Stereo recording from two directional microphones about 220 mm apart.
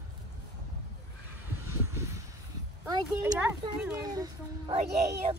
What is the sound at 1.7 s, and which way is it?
Vehicle, 10° right (ahead or behind).